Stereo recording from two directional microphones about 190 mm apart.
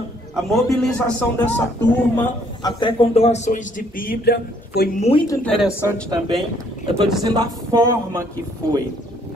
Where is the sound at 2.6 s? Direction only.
25° left (ahead or behind); by 4.9 s 60° left (ahead or behind).